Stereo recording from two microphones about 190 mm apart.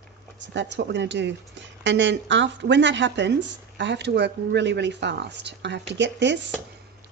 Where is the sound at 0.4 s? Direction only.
70° right (ahead or behind).